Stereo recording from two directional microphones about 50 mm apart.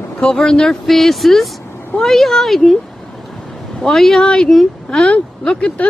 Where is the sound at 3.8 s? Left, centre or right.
Centre.